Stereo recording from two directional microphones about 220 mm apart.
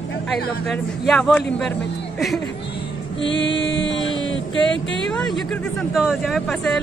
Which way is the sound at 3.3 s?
55° left (ahead or behind).